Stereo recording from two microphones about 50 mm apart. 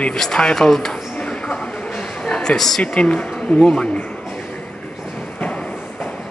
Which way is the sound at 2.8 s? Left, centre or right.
Left.